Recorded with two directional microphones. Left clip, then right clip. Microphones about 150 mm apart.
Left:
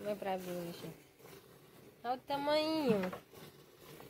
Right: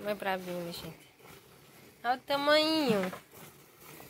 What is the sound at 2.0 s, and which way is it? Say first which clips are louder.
Speech: right 7 dB; 5° right (ahead or behind).